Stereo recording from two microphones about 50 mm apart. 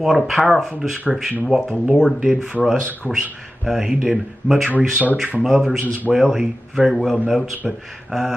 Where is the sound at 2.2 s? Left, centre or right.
Centre.